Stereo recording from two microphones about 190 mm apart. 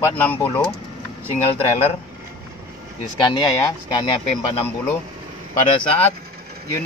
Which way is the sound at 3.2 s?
25° left (ahead or behind).